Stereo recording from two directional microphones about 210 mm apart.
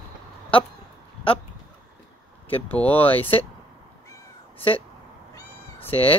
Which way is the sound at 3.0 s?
25° left (ahead or behind).